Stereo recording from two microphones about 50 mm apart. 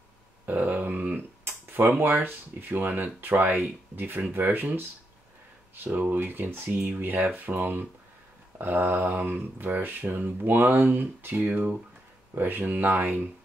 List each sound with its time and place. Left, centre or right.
0.5 s speech: right
5.9 s speech: right